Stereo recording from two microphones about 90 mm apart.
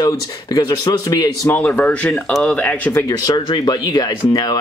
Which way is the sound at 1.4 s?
20° left (ahead or behind).